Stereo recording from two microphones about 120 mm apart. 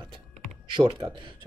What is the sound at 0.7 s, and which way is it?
Speech, 40° right (ahead or behind).